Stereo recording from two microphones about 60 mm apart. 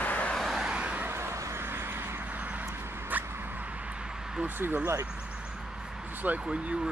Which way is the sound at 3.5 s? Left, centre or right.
Right.